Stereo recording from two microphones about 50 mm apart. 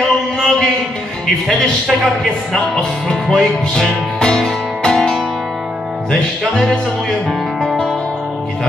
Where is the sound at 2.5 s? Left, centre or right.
Centre.